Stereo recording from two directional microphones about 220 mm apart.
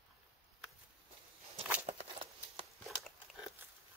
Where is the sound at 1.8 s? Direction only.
25° right (ahead or behind).